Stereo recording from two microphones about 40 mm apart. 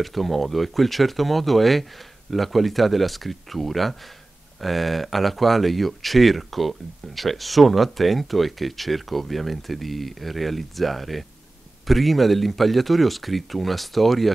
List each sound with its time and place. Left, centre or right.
0.0 s speech: centre